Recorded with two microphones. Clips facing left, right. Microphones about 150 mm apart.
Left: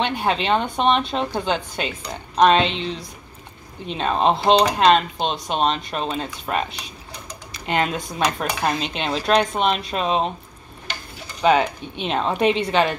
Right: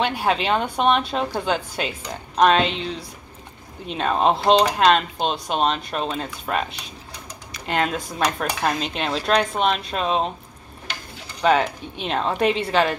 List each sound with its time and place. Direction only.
0.0 s speech: 5° right (ahead or behind)
11.4 s speech: centre (ahead or behind)